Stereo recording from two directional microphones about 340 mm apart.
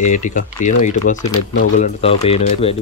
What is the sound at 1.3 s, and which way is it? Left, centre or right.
Speech, centre.